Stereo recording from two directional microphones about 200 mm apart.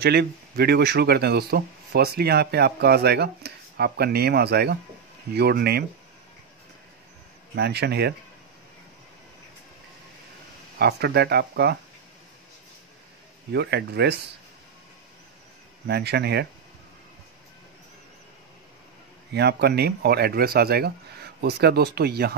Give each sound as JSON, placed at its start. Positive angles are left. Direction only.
{"t": 0.0, "sound": "speech", "side_deg": -55}
{"t": 7.5, "sound": "speech", "side_deg": -55}
{"t": 10.8, "sound": "speech", "side_deg": -55}
{"t": 13.5, "sound": "speech", "side_deg": -55}
{"t": 15.9, "sound": "speech", "side_deg": -55}
{"t": 19.3, "sound": "speech", "side_deg": -55}